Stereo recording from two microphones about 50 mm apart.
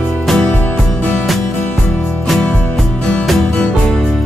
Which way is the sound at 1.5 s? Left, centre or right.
Left.